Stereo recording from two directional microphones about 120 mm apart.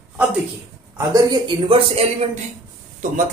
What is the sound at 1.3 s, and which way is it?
Speech, 45° right (ahead or behind).